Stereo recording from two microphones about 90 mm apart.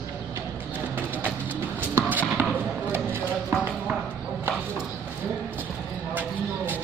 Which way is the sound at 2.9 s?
25° right (ahead or behind).